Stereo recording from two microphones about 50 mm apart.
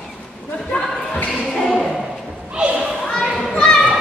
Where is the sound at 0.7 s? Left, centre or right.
Left.